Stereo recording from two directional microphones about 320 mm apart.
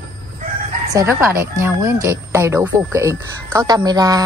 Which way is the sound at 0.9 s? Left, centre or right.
Centre.